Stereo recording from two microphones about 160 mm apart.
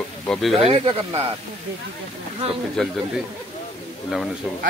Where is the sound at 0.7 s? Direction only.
40° right (ahead or behind).